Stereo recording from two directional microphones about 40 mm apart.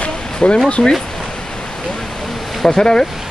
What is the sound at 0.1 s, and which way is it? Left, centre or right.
Music, centre.